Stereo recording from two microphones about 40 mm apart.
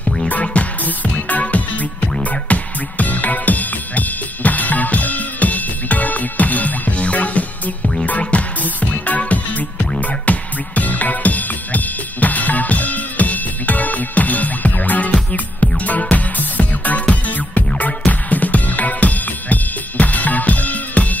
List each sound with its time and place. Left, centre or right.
0.3 s music: left